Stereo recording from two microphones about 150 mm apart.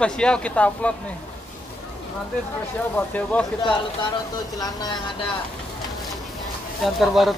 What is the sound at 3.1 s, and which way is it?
Speech, 10° left (ahead or behind).